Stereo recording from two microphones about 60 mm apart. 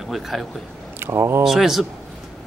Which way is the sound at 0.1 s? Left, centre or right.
Centre.